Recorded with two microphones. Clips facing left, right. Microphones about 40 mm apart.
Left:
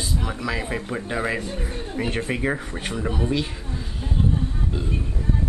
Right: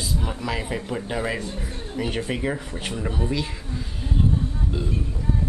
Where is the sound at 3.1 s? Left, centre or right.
Centre.